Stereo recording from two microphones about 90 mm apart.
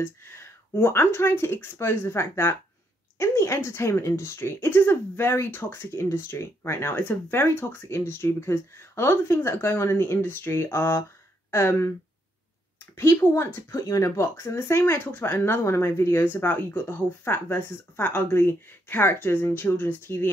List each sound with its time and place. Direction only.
0.0 s speech: 25° left (ahead or behind)
12.9 s speech: 25° left (ahead or behind)